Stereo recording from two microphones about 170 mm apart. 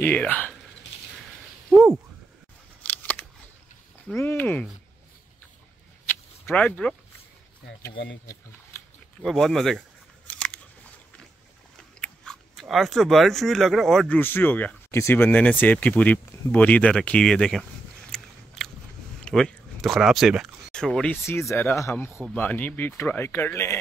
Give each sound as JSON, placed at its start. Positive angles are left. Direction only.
{"t": 0.0, "sound": "speech", "side_deg": 10}
{"t": 2.8, "sound": "scissors", "side_deg": 10}
{"t": 4.1, "sound": "speech", "side_deg": 15}
{"t": 6.0, "sound": "vehicle", "side_deg": 10}
{"t": 8.7, "sound": "a sound", "side_deg": 15}
{"t": 9.2, "sound": "biting", "side_deg": 0}
{"t": 12.0, "sound": "speech", "side_deg": 0}
{"t": 18.1, "sound": "biting", "side_deg": 0}
{"t": 19.2, "sound": "speech", "side_deg": 5}